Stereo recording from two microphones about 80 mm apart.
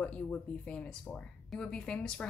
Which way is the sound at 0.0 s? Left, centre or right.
Centre.